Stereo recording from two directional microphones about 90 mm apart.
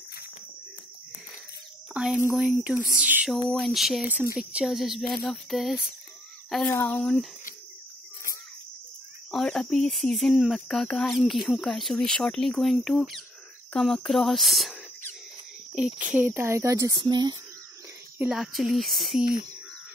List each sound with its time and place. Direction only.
2.0 s a woman's voice: 15° right (ahead or behind)
3.3 s speech: 5° left (ahead or behind)
4.1 s a woman's voice: 15° right (ahead or behind)
6.7 s speech: 25° left (ahead or behind)
7.0 s speech: 5° left (ahead or behind)
9.3 s speech: 5° left (ahead or behind); by 16.9 s 35° right (ahead or behind)
16.9 s speech: 55° right (ahead or behind)
18.3 s speech: centre (ahead or behind)